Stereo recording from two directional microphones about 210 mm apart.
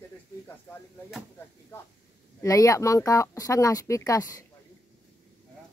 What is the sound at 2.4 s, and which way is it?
Speech, 15° left (ahead or behind).